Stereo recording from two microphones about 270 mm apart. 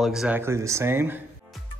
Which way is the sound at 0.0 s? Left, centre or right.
Centre.